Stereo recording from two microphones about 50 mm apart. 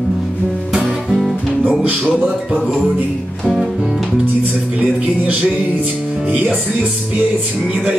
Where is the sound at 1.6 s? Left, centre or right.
Right.